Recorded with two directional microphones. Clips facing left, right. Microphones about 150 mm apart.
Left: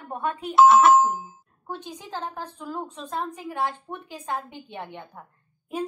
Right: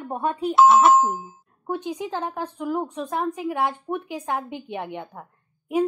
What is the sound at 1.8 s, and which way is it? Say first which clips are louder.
Speech: right 10 dB; 70° right (ahead or behind).